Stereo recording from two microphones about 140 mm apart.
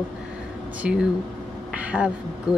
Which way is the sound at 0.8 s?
10° right (ahead or behind).